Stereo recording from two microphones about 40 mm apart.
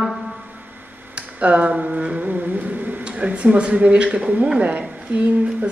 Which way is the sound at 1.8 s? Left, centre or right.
Right.